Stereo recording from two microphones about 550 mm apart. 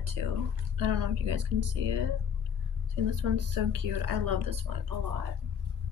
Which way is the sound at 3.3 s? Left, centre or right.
Right.